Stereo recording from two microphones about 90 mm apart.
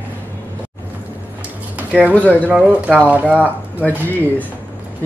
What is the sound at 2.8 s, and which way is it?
Speech, 15° right (ahead or behind).